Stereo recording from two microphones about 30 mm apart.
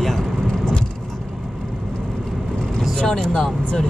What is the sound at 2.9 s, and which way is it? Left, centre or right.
Speech, left.